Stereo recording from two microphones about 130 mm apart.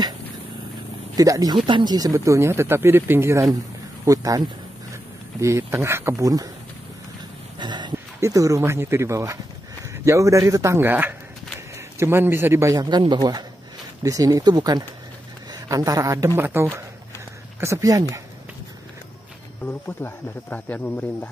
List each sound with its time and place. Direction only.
1.1 s speech: 30° right (ahead or behind)
7.5 s a sound: 35° right (ahead or behind)
8.2 s speech: 25° right (ahead or behind)
19.6 s speech: 15° left (ahead or behind)